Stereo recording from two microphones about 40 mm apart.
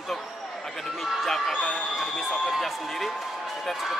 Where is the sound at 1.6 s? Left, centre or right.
Left.